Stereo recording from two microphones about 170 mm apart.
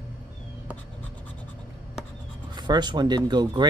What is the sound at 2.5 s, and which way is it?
Speech, 25° right (ahead or behind).